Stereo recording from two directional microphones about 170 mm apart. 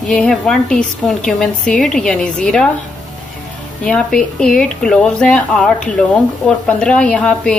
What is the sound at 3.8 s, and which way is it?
A woman's voice, 5° left (ahead or behind).